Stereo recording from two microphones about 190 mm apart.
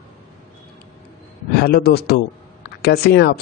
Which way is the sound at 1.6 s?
55° left (ahead or behind).